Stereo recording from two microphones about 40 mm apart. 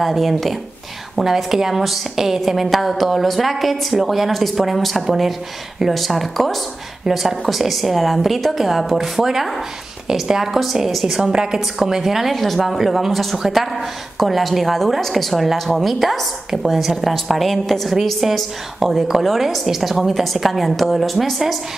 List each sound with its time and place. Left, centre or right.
0.0 s a woman's voice: centre
11.3 s a woman's voice: centre
11.9 s a woman's voice: centre
16.4 s a woman's voice: centre